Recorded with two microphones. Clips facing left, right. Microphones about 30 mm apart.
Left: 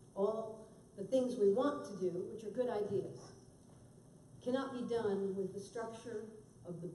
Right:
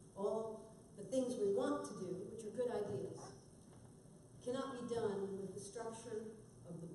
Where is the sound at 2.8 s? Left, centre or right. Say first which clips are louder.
Left 6 dB; centre.